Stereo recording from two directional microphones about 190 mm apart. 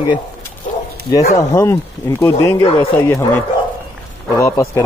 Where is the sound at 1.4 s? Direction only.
15° left (ahead or behind).